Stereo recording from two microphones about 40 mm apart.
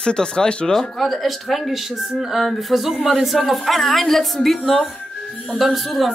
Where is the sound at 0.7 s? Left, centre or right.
Centre.